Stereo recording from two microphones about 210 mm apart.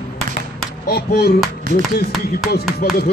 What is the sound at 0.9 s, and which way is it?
Speech, 50° left (ahead or behind).